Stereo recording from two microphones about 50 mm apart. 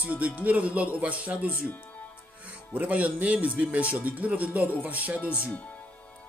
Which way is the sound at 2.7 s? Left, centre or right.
Right.